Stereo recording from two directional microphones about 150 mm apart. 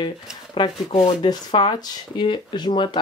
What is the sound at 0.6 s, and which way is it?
Speech, 35° left (ahead or behind).